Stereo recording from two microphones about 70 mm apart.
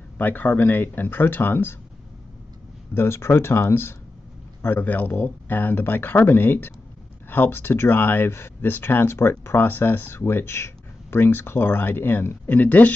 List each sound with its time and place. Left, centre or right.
0.2 s speech: left
2.9 s speech: left